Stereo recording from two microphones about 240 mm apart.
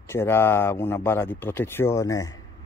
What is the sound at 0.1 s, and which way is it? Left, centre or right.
Speech, centre.